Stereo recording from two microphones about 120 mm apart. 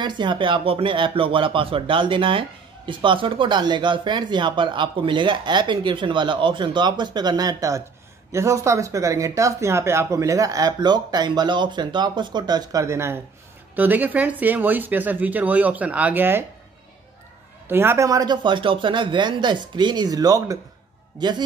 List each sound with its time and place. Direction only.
0.0 s speech: 40° right (ahead or behind); by 16.4 s 15° right (ahead or behind)
17.6 s speech: 20° right (ahead or behind); by 21.3 s 35° right (ahead or behind)